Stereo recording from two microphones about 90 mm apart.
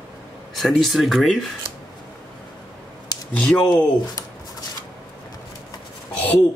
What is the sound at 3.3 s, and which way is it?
Speech, 10° left (ahead or behind).